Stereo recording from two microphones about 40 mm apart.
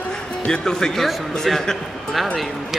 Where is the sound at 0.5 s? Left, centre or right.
Centre.